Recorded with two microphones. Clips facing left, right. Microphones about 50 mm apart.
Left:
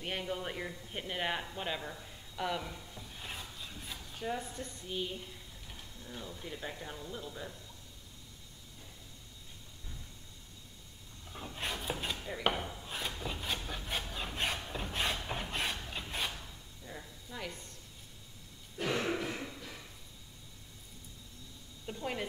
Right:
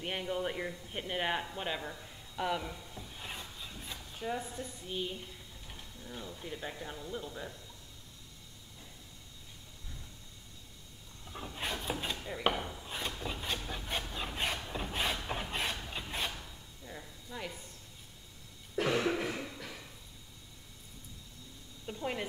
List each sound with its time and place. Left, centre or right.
0.0 s speech: centre
11.2 s wood: centre
15.2 s rub: centre
16.8 s a sound: centre
18.9 s cough: right
19.2 s a sound: centre
21.8 s speech: centre